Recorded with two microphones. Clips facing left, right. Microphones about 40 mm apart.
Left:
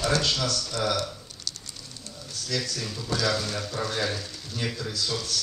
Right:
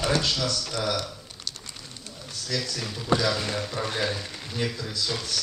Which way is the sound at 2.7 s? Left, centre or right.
Right.